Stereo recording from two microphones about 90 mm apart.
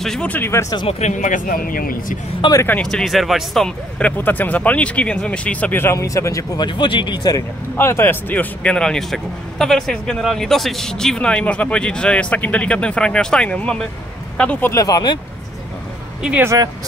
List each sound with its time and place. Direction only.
0.0 s speech: 5° left (ahead or behind)
0.3 s speech: 30° left (ahead or behind)
2.4 s speech: 60° left (ahead or behind)
2.8 s speech: 5° left (ahead or behind)
4.0 s speech: 20° left (ahead or behind)
5.9 s speech: 35° left (ahead or behind)
6.6 s speech: 60° left (ahead or behind)
7.7 s speech: 30° left (ahead or behind); by 14.6 s 10° left (ahead or behind)
14.8 s speech: 45° left (ahead or behind)
16.2 s speech: 10° right (ahead or behind)